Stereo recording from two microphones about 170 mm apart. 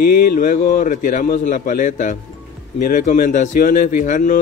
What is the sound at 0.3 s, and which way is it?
Speech, 60° left (ahead or behind).